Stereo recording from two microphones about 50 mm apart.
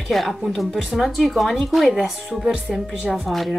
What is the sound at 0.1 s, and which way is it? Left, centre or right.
A woman's voice, centre.